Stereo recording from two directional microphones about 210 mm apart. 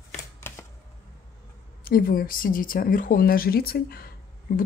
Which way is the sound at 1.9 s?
45° left (ahead or behind).